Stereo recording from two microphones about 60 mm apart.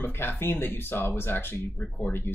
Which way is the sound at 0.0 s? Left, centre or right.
Left.